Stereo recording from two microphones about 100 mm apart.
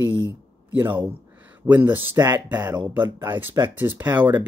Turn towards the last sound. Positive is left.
turn(degrees=-20)  # may be behind; listen again after turning